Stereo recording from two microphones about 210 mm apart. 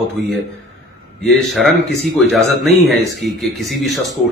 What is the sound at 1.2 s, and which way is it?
A man's voice, centre (ahead or behind).